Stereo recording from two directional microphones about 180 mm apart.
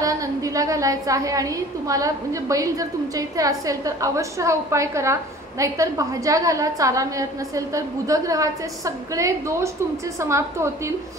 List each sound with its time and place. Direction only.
0.0 s a woman's voice: 20° right (ahead or behind)